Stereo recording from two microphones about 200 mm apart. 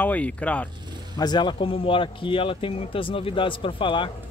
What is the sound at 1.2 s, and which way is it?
Speech, 20° left (ahead or behind).